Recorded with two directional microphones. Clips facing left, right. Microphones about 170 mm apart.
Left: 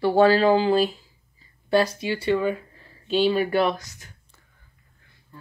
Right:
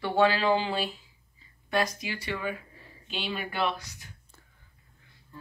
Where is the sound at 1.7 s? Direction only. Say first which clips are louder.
Left 8 dB; 30° left (ahead or behind).